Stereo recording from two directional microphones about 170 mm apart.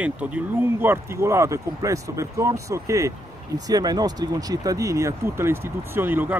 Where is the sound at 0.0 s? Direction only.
10° right (ahead or behind).